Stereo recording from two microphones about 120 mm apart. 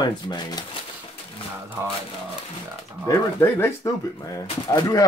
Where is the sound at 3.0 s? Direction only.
25° left (ahead or behind).